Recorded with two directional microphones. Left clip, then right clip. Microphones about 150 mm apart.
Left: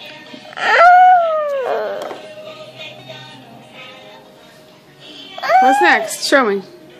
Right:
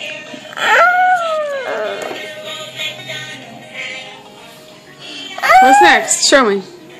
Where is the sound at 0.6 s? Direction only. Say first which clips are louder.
Left 2 dB; 40° left (ahead or behind).